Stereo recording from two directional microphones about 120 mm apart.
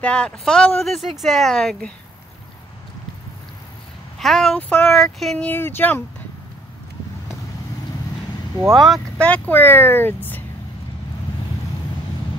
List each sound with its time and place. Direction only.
0.0 s speech: 10° left (ahead or behind)
4.2 s speech: 5° left (ahead or behind)
5.4 s speech: 20° left (ahead or behind)
8.7 s speech: centre (ahead or behind); by 10.4 s 15° left (ahead or behind)